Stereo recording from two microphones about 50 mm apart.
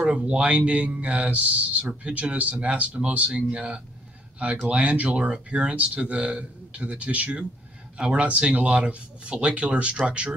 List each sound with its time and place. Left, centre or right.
0.0 s speech: centre